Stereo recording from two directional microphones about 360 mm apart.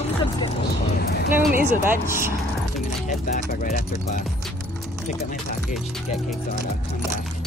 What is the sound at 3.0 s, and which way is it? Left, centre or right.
Speech, left.